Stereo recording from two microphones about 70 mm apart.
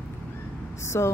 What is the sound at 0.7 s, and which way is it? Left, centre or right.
Speech, left.